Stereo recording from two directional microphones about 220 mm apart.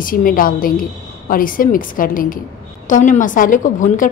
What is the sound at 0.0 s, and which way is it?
A woman's voice, 40° left (ahead or behind).